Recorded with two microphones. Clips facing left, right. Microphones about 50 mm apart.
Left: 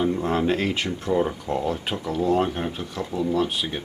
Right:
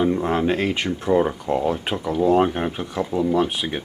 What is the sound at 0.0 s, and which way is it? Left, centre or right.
Speech, centre.